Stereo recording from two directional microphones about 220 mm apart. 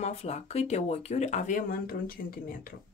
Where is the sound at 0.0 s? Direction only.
30° left (ahead or behind).